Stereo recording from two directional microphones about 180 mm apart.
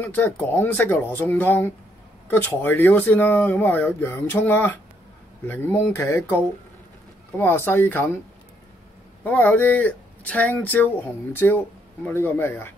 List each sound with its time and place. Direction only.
0.0 s speech: 10° left (ahead or behind)
9.2 s speech: 10° left (ahead or behind)